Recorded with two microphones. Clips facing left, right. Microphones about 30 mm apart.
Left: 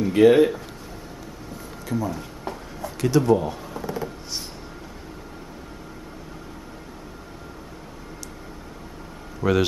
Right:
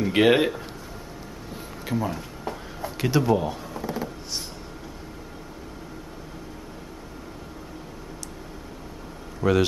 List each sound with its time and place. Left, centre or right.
0.1 s speech: right
1.9 s speech: right
2.8 s a sound: right
3.3 s speech: centre
3.7 s a sound: centre
9.4 s speech: centre